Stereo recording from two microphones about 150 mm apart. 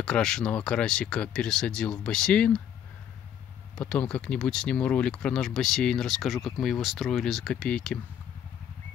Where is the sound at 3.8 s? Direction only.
5° left (ahead or behind).